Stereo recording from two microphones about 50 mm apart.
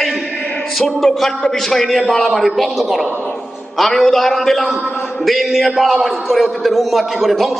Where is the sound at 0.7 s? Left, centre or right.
Centre.